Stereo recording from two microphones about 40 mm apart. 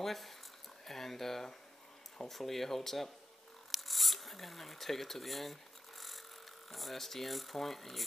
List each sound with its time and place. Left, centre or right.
0.0 s speech: centre
3.7 s a sound: centre
6.7 s speech: centre